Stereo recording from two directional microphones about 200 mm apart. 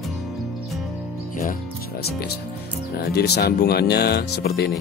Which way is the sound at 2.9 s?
55° left (ahead or behind).